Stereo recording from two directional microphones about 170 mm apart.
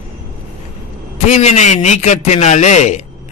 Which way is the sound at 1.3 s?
40° left (ahead or behind).